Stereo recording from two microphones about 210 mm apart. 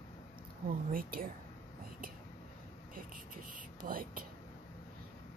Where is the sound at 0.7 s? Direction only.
45° right (ahead or behind).